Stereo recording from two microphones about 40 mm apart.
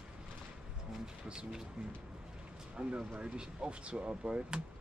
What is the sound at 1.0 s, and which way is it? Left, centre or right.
Speech, right.